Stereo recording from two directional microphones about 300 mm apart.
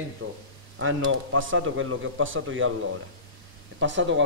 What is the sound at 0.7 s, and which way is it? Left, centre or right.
Speech, right.